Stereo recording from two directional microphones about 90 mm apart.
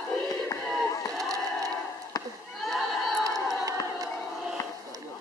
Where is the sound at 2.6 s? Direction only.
Centre (ahead or behind).